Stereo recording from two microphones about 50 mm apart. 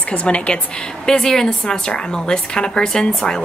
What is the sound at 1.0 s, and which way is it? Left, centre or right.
A woman's voice, centre.